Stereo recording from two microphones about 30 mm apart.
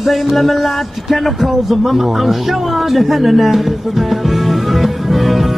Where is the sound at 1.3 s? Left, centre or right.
Centre.